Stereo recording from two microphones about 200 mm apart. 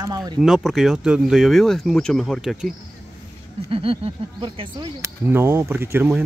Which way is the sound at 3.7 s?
25° right (ahead or behind).